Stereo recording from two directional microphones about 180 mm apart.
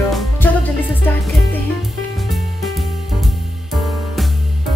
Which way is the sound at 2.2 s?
Centre (ahead or behind).